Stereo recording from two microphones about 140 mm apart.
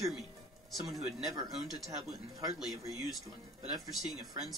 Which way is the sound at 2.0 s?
25° right (ahead or behind).